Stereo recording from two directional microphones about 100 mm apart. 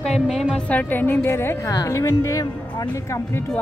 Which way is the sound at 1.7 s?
35° left (ahead or behind).